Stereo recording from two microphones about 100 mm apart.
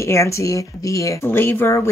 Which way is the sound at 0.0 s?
30° left (ahead or behind).